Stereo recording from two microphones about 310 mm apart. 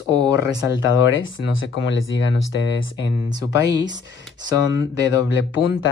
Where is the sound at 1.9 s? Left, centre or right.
Left.